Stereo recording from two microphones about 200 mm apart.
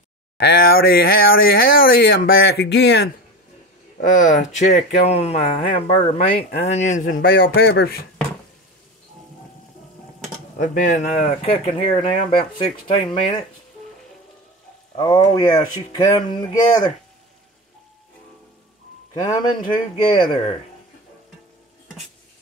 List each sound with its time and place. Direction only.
0.4 s speech: 50° left (ahead or behind)
4.0 s speech: 40° left (ahead or behind)
10.6 s speech: 40° left (ahead or behind)
15.0 s speech: 20° left (ahead or behind)
20.0 s speech: 25° left (ahead or behind)